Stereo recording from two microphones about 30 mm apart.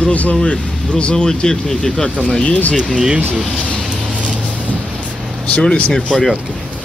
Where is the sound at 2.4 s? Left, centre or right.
Left.